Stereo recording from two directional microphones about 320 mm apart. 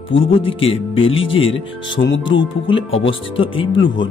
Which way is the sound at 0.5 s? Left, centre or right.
Centre.